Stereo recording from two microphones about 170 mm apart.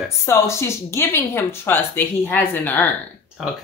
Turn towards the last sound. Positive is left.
turn(degrees=0)  # may be behind; listen again after turning